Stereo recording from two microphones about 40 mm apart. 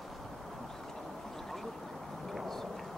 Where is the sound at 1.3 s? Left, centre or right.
Centre.